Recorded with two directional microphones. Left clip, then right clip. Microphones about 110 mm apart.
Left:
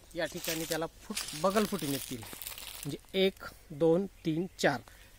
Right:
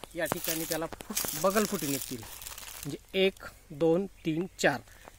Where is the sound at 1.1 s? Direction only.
40° right (ahead or behind).